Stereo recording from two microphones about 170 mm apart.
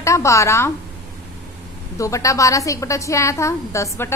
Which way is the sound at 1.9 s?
20° left (ahead or behind).